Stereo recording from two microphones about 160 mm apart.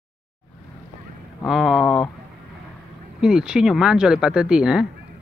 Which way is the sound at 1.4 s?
Centre (ahead or behind).